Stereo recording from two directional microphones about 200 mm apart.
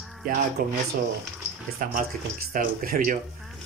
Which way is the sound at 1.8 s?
45° right (ahead or behind).